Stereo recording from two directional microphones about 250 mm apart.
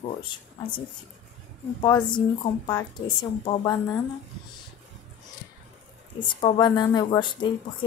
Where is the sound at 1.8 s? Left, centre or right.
Centre.